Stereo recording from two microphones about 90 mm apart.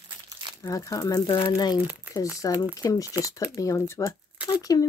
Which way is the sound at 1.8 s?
15° right (ahead or behind).